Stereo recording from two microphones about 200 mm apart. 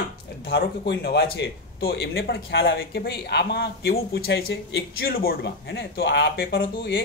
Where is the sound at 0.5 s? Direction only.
55° left (ahead or behind).